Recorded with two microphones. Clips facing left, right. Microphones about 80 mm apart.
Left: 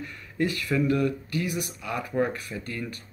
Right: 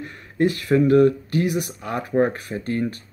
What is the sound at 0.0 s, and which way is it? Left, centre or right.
Speech, right.